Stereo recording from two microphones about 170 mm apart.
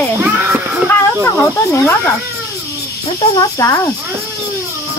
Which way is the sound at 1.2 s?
20° left (ahead or behind).